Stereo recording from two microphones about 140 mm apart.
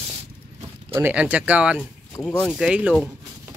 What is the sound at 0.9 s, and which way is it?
Speech, 15° right (ahead or behind).